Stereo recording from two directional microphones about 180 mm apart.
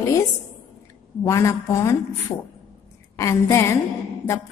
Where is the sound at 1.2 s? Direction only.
15° left (ahead or behind).